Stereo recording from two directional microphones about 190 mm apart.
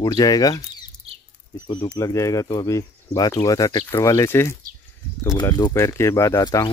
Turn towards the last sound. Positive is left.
turn(degrees=20)  # may be behind; listen again after turning